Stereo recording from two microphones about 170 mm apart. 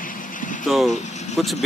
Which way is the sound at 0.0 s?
50° left (ahead or behind).